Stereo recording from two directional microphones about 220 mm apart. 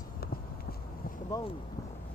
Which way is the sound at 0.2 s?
45° left (ahead or behind).